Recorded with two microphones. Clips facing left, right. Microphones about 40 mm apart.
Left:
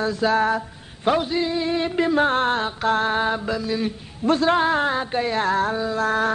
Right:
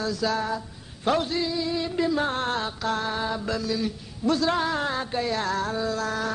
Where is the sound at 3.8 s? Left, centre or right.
Left.